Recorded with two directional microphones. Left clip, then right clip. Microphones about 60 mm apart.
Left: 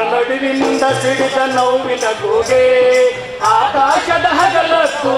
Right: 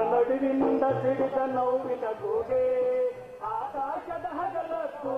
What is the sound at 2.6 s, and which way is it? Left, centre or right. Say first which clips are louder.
Music: left 17 dB; right.